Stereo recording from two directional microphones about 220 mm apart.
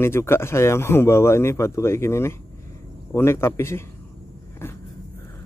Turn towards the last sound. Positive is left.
turn(degrees=10)  # may be behind; listen again after turning